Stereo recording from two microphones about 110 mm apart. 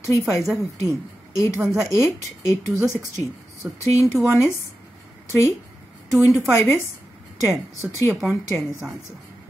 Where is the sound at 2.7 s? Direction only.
25° right (ahead or behind).